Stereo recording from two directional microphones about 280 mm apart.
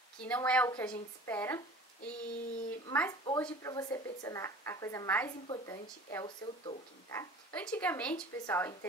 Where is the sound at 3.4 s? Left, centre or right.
Centre.